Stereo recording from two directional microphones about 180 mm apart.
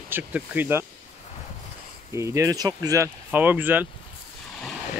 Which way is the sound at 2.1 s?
15° right (ahead or behind).